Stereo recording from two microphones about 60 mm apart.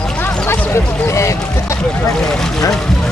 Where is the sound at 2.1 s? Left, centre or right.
Centre.